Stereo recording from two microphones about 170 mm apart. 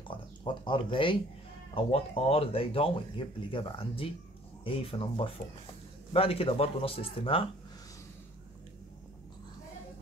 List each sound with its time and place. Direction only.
0.1 s speech: 30° left (ahead or behind)